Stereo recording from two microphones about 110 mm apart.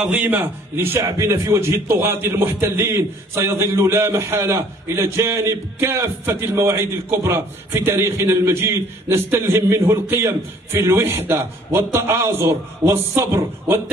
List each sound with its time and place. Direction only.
0.0 s a man's voice: 15° right (ahead or behind)